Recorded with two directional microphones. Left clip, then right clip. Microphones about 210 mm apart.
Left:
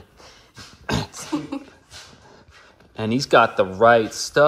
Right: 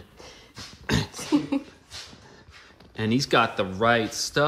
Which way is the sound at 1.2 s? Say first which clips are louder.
Right 3 dB; 40° right (ahead or behind).